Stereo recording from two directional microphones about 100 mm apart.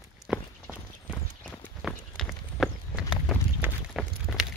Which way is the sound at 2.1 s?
Centre (ahead or behind).